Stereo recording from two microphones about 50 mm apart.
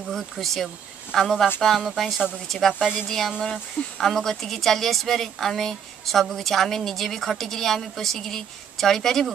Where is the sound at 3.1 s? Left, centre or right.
Centre.